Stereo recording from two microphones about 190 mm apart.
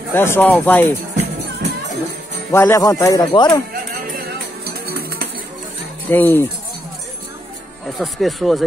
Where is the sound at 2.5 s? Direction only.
15° left (ahead or behind).